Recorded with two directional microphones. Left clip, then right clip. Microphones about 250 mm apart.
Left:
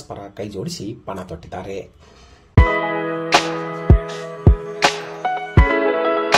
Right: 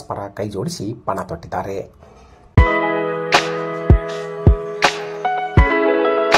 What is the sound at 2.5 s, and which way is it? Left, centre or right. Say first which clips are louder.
Music: right 2 dB; centre.